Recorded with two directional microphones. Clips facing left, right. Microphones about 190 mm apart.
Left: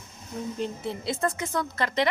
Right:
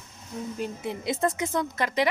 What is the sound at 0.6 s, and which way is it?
Speech, 15° right (ahead or behind).